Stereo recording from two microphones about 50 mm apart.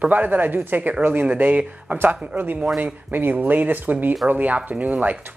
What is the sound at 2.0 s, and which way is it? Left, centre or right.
Speech, right.